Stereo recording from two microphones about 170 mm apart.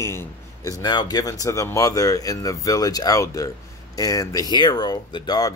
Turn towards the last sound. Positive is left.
turn(degrees=25)  # may be behind; listen again after turning